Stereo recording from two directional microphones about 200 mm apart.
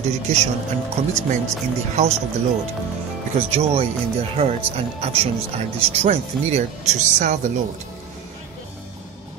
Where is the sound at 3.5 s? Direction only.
30° right (ahead or behind).